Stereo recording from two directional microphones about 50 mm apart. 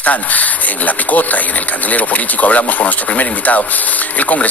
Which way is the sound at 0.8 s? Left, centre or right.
Left.